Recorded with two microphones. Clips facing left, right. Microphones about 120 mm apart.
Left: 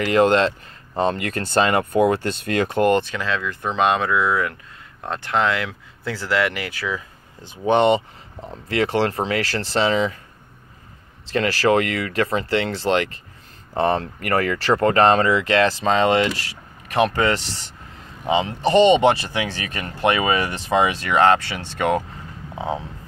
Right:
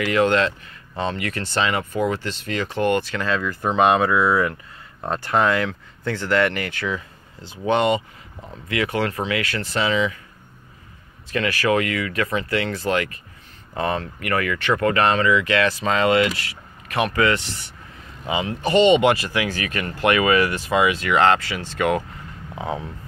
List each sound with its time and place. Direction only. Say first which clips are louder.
0.0 s speech: left 2 dB; 35° left (ahead or behind); by 2.9 s 55° left (ahead or behind)
2.9 s speech: left 3 dB; 25° left (ahead or behind)
3.2 s speech: right 2 dB; centre (ahead or behind)
7.4 s speech: left 3 dB; 20° left (ahead or behind)
11.2 s speech: left 3 dB; 30° left (ahead or behind)
21.1 s speech: left 3 dB; 20° left (ahead or behind)